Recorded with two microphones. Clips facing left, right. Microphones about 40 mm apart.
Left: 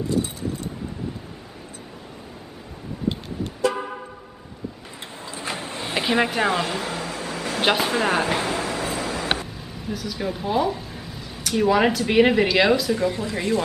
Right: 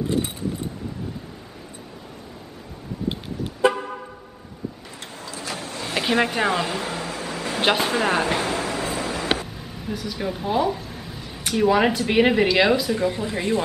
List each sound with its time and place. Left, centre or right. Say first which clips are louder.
3.7 s car: left 1 dB; centre
5.3 s vehicle: left 2 dB; left
6.0 s speech: even; centre
6.3 s a sound: even; centre
11.5 s speech: even; centre